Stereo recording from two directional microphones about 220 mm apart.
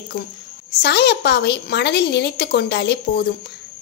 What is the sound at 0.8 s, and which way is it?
Speech, 50° left (ahead or behind).